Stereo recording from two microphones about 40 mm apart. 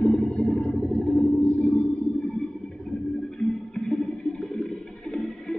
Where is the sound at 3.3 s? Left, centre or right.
Centre.